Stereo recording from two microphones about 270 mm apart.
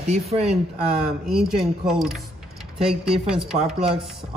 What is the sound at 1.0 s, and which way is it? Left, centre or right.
Speech, centre.